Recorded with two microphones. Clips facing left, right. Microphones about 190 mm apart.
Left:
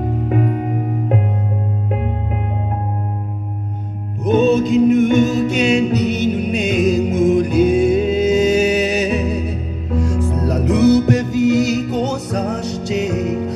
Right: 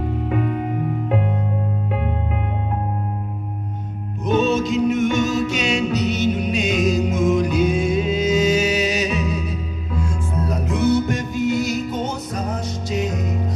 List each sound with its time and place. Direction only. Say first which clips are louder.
0.3 s music: left 3 dB; 40° left (ahead or behind)
4.4 s music: left 6 dB; 55° left (ahead or behind)